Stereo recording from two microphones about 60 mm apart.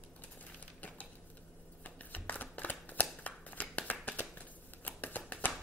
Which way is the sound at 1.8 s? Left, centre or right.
Left.